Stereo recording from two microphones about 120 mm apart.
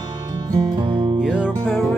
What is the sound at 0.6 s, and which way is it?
Music, 40° right (ahead or behind).